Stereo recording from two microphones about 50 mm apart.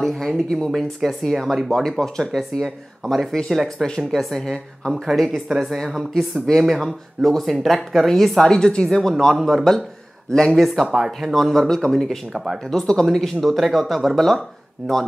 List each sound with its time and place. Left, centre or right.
0.0 s a sound: centre
0.7 s speech: centre
4.9 s speech: centre
8.5 s speech: centre